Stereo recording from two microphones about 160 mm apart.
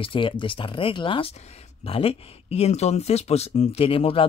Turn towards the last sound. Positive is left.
turn(degrees=35)  # may be behind; listen again after turning